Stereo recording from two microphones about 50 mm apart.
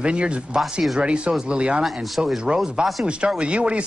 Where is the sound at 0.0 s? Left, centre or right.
Right.